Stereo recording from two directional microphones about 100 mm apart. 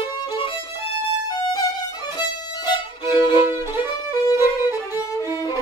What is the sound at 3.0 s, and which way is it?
Violin, 25° right (ahead or behind).